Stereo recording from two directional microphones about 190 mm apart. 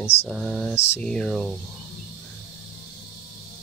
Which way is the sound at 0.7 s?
35° left (ahead or behind).